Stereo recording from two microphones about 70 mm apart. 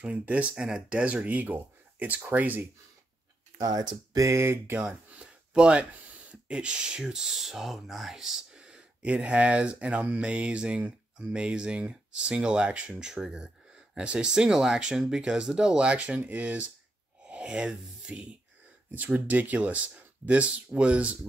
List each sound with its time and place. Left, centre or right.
0.0 s speech: right
3.6 s speech: right
4.3 s speech: right
4.7 s speech: centre
18.9 s speech: right